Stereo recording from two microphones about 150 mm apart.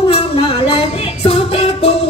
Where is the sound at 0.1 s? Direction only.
40° left (ahead or behind).